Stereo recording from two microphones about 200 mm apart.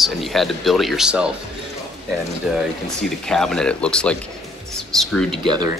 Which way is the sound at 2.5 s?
Centre (ahead or behind).